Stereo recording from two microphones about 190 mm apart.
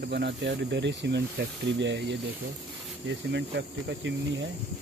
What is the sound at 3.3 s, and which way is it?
Speech, 70° right (ahead or behind).